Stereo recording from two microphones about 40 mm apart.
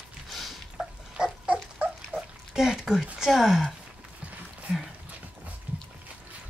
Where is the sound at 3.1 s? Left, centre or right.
Centre.